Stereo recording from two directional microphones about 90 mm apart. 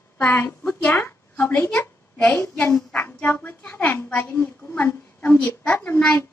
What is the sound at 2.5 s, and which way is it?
A woman's voice, 10° left (ahead or behind).